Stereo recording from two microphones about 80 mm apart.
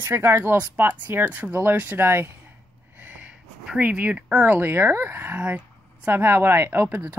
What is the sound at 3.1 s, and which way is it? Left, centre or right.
A woman's voice, centre.